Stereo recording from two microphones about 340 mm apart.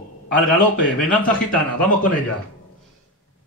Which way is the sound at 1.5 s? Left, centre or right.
Centre.